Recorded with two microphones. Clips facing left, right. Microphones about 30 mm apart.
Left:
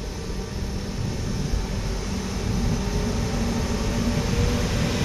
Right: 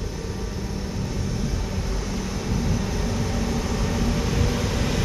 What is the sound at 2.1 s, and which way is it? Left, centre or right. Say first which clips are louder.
Vehicle: right 1 dB; centre.